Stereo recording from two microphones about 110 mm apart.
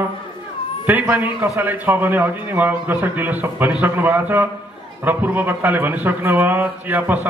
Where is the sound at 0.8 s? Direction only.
15° right (ahead or behind).